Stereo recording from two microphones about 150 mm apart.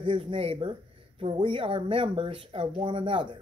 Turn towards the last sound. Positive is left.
turn(degrees=-35)  # may be behind; listen again after turning